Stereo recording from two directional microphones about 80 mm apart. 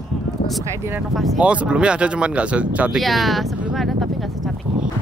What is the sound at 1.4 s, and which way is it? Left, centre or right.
Speech, centre.